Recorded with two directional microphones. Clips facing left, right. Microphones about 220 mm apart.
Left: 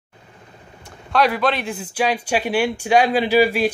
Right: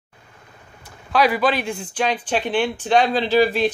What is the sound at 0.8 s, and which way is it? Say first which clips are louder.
A man's voice: even; centre (ahead or behind).